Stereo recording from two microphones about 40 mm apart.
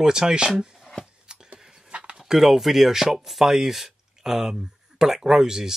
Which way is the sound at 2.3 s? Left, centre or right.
Centre.